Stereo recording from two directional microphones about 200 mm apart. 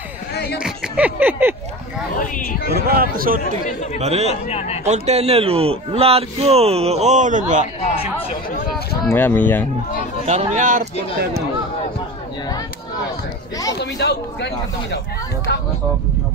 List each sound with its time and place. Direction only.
0.3 s a sound: 55° left (ahead or behind)
0.6 s speech: 5° right (ahead or behind)
2.1 s speech: 45° left (ahead or behind)
2.7 s speech: 50° right (ahead or behind)
4.0 s a man's voice: 35° right (ahead or behind)
4.5 s a man's voice: 30° left (ahead or behind)
4.8 s a man's voice: 35° right (ahead or behind)
7.8 s speech: 30° left (ahead or behind)
9.0 s speech: 10° left (ahead or behind)
10.2 s a man's voice: 35° right (ahead or behind)
13.7 s speech: 55° left (ahead or behind)